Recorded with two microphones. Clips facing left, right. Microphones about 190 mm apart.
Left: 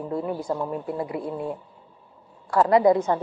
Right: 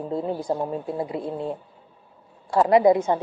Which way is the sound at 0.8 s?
25° right (ahead or behind).